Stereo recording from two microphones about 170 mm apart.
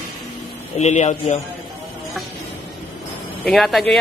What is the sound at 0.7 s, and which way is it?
Speech, 45° left (ahead or behind).